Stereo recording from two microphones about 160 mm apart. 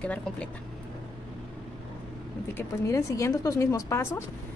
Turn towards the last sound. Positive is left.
turn(degrees=15)  # may be behind; listen again after turning